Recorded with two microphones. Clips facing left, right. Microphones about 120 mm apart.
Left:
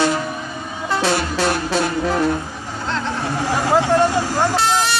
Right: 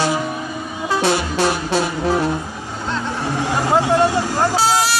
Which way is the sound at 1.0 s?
15° right (ahead or behind).